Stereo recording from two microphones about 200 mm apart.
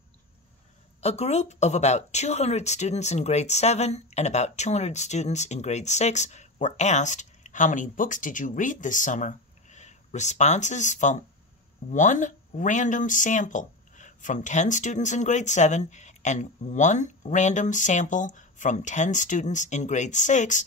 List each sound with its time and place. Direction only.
1.0 s speech: 35° left (ahead or behind)